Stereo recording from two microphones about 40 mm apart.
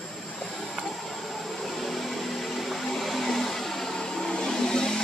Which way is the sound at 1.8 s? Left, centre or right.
Centre.